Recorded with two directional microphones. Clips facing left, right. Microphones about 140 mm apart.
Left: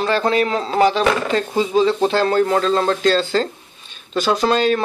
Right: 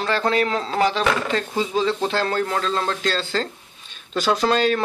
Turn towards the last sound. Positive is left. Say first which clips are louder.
# left 3 dB
turn(degrees=5)  # may be behind; listen again after turning